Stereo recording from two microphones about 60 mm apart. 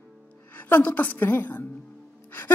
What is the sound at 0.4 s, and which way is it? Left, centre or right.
A woman's voice, left.